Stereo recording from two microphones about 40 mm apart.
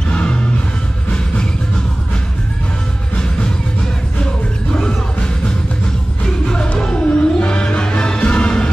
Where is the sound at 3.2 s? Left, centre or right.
Centre.